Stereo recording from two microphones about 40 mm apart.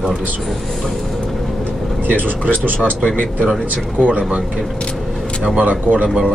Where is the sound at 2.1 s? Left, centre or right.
Right.